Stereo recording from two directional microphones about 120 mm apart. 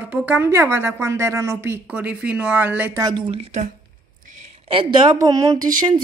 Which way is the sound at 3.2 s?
50° right (ahead or behind).